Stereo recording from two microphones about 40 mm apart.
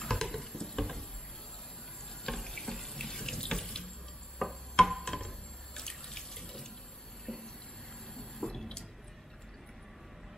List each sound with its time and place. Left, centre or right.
0.0 s water: centre
2.2 s sink: centre
4.4 s music: centre
5.0 s a sound: centre
5.8 s water tap: centre
7.3 s train: centre
8.1 s a sound: centre